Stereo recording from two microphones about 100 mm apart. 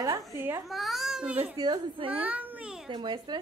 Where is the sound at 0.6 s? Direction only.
Centre (ahead or behind).